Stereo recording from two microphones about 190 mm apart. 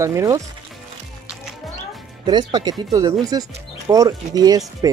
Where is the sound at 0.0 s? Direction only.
15° right (ahead or behind).